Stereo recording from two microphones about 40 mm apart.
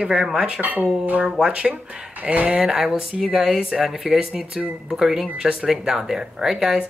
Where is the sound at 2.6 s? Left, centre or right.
Centre.